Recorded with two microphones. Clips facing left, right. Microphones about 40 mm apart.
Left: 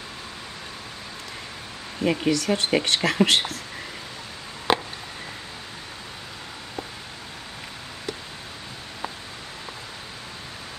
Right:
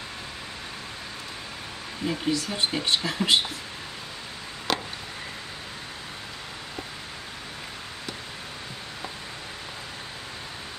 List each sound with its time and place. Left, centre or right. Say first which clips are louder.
2.0 s speech: left 5 dB; left
4.7 s chop: left 6 dB; left